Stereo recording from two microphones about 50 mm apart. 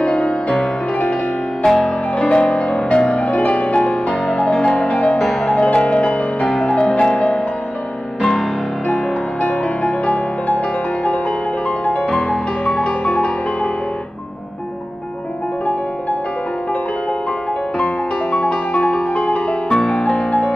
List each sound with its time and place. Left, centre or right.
0.0 s music: left
1.6 s music: centre
2.1 s music: left
5.1 s music: centre
5.6 s music: centre
6.4 s music: centre
9.4 s music: left
11.8 s music: left
17.7 s music: left